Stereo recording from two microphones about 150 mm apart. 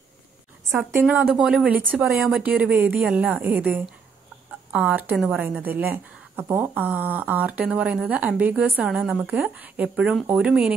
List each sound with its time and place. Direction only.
0.7 s a woman's voice: 15° right (ahead or behind)